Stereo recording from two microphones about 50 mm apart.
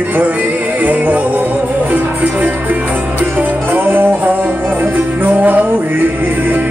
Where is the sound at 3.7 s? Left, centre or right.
Right.